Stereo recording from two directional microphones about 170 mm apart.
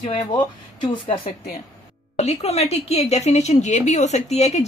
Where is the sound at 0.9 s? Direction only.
30° left (ahead or behind).